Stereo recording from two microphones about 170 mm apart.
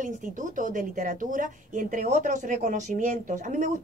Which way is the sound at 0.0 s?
50° right (ahead or behind).